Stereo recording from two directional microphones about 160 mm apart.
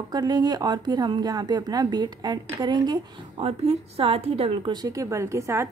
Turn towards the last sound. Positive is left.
turn(degrees=-20)  # may be behind; listen again after turning